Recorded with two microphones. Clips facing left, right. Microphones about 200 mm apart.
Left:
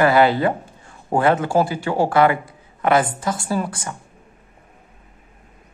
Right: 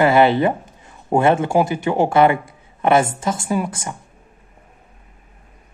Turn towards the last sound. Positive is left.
turn(degrees=-25)  # may be behind; listen again after turning